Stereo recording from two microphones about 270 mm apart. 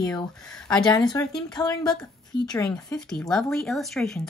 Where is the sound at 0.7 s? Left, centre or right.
Centre.